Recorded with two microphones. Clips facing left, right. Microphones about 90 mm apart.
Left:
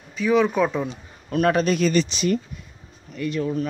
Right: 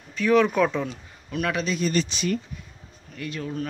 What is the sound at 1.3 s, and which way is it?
Speech, 40° left (ahead or behind).